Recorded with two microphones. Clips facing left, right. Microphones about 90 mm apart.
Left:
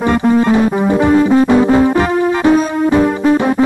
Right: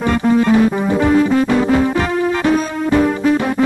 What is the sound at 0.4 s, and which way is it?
Music, 15° left (ahead or behind).